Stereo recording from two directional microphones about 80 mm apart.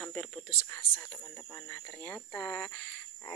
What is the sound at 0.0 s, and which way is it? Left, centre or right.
Speech, centre.